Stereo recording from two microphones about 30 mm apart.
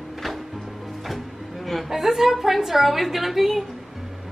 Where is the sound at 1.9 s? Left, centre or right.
Centre.